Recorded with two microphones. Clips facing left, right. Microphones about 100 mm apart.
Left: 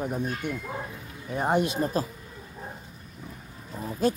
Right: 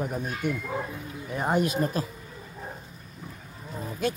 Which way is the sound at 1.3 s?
25° left (ahead or behind).